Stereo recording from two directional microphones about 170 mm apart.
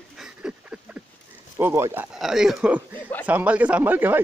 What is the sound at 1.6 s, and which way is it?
Speech, 15° right (ahead or behind).